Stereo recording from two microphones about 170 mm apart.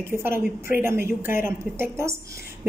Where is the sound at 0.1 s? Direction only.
15° right (ahead or behind).